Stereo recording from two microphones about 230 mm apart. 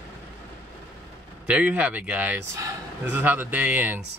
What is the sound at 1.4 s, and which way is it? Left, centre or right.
A man's voice, centre.